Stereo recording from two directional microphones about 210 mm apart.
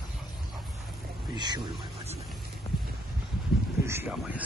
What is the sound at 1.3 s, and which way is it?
Speech, 20° right (ahead or behind).